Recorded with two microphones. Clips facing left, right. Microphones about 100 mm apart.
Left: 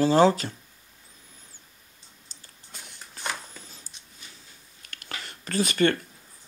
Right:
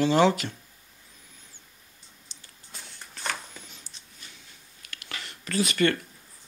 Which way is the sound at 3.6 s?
35° left (ahead or behind).